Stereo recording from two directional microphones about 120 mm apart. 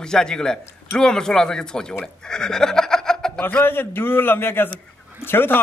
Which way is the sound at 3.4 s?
15° left (ahead or behind).